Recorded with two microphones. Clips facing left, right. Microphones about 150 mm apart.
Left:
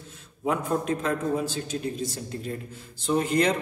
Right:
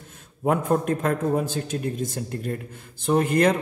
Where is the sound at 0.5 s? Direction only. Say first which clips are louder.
Right 4 dB; 50° right (ahead or behind).